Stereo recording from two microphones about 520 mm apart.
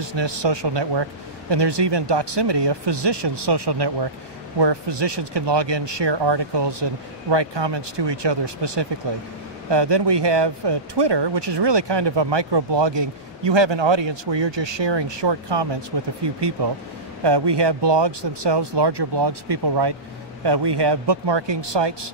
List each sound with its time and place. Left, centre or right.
0.0 s speech: right